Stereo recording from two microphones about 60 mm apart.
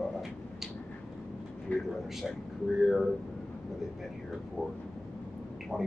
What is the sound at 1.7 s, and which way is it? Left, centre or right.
Speech, left.